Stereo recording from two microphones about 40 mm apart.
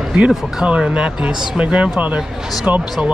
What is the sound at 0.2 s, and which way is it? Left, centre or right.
Speech, right.